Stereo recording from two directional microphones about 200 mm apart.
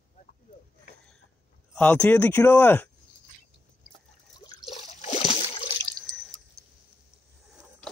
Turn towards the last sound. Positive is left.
turn(degrees=0)  # may be behind; listen again after turning